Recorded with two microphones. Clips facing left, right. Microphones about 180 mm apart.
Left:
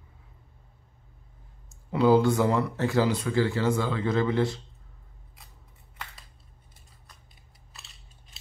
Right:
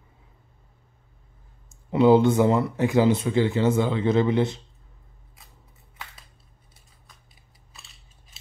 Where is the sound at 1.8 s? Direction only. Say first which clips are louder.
Right 4 dB; 20° right (ahead or behind).